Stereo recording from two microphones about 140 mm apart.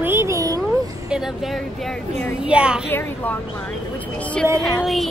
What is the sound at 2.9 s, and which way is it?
Speech, 15° left (ahead or behind).